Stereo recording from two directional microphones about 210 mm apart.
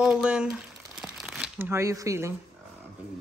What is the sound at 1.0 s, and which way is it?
Crumpling, centre (ahead or behind).